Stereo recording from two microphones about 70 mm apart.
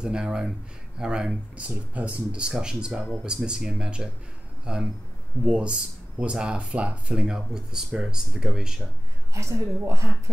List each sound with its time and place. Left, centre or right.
0.0 s speech: centre
9.3 s a woman's voice: right